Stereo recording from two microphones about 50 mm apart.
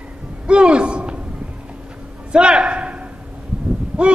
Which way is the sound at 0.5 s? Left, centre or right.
Right.